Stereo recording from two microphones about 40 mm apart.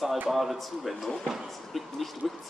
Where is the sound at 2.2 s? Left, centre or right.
Centre.